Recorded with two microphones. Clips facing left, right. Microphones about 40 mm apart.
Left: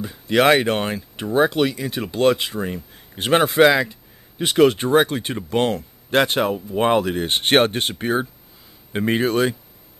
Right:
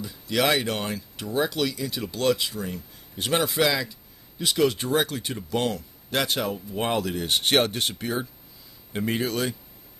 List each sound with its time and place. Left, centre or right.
0.0 s speech: left